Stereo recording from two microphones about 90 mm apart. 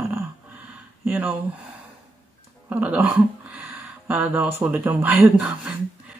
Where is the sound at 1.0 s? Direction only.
20° right (ahead or behind).